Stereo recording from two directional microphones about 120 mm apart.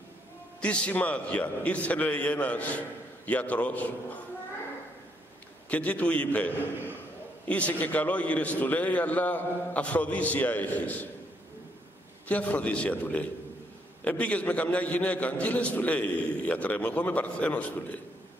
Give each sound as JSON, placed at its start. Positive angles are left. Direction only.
{"t": 0.6, "sound": "a man's voice", "side_deg": 10}
{"t": 5.7, "sound": "a man's voice", "side_deg": 10}
{"t": 12.3, "sound": "a man's voice", "side_deg": 10}